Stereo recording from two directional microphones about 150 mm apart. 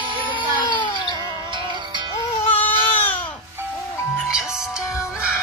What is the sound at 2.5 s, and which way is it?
Baby cry, 10° left (ahead or behind).